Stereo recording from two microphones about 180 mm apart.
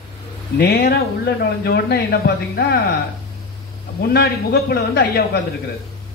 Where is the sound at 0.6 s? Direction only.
60° left (ahead or behind).